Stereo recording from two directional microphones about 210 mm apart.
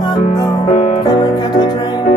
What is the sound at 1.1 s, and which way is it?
Music, 20° left (ahead or behind).